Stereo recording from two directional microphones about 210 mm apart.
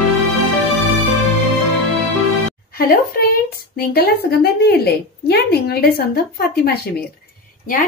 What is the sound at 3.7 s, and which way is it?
A woman's voice, 45° left (ahead or behind).